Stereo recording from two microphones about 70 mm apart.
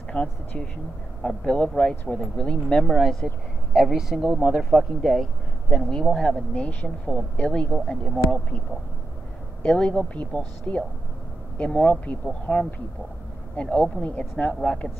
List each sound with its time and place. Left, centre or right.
0.1 s speech: centre
1.4 s speech: centre
2.8 s speech: centre
3.7 s speech: centre
4.3 s speech: right
4.6 s speech: centre
6.5 s speech: left
9.6 s speech: centre